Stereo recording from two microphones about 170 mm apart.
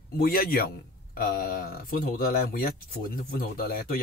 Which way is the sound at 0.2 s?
60° left (ahead or behind).